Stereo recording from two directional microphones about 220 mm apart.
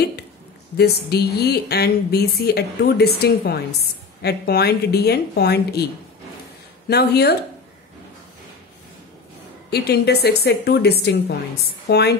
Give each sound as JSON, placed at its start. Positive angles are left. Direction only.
{"t": 0.7, "sound": "speech", "side_deg": 45}
{"t": 6.9, "sound": "speech", "side_deg": 45}
{"t": 9.7, "sound": "speech", "side_deg": 45}